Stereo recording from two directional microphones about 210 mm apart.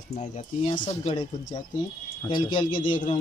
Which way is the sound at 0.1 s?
30° left (ahead or behind).